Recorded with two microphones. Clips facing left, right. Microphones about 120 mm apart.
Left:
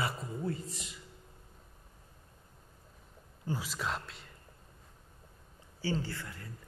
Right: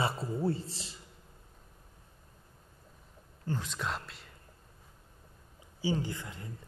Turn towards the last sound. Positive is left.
turn(degrees=-20)  # may be behind; listen again after turning